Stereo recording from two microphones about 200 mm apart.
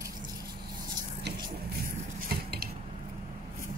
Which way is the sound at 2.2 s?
50° right (ahead or behind).